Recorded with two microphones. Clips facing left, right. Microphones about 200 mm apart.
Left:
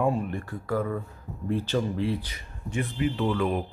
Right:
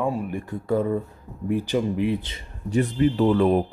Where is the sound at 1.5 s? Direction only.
15° right (ahead or behind).